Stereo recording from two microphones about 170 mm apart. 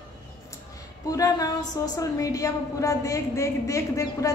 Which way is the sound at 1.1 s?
20° left (ahead or behind).